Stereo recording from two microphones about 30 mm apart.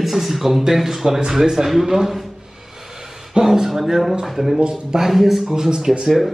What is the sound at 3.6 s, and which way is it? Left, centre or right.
A man's voice, centre.